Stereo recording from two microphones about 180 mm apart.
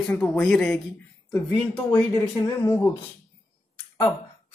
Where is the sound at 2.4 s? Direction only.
20° left (ahead or behind).